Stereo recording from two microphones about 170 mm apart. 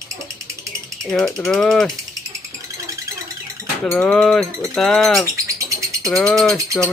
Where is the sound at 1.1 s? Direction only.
5° left (ahead or behind).